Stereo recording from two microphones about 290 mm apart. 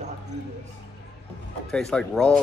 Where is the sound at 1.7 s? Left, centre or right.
Centre.